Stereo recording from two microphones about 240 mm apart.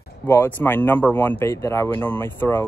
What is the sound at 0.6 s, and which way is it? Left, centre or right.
Speech, centre.